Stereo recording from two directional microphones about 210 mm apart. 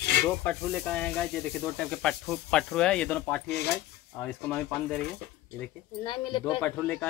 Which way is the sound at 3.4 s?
50° left (ahead or behind).